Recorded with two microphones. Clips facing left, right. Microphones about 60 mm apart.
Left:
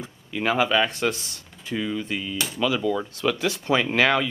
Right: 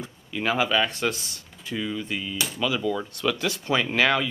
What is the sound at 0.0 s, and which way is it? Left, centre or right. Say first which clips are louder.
Speech: left 2 dB; centre.